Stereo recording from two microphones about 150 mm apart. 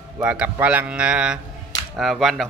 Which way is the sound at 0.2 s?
10° right (ahead or behind).